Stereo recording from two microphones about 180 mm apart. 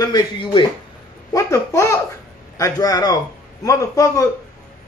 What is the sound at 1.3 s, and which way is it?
Babbling, 15° left (ahead or behind).